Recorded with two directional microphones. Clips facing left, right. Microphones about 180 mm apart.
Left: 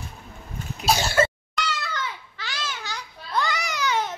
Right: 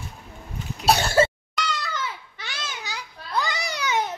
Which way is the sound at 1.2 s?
30° right (ahead or behind).